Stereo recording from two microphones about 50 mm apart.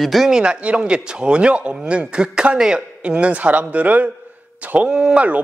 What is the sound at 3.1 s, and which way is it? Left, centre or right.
A man's voice, right.